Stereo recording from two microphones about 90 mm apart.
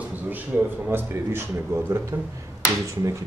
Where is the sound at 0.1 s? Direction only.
20° right (ahead or behind).